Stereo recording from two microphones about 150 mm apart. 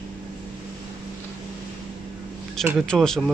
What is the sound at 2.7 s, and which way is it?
Speech, 5° left (ahead or behind).